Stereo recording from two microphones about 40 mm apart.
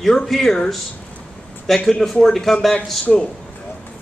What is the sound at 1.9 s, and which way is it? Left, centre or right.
Speech, centre.